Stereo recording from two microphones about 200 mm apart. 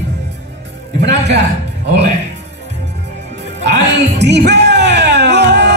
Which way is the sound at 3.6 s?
60° right (ahead or behind).